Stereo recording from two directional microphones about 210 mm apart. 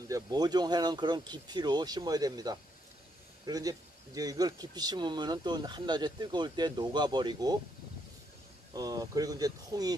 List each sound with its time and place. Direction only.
0.1 s speech: 20° right (ahead or behind)
8.7 s speech: 15° right (ahead or behind)